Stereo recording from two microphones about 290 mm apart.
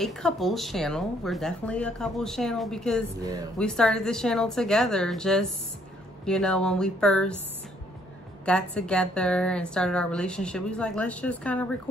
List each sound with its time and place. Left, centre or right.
0.0 s a woman's voice: centre
8.5 s a woman's voice: centre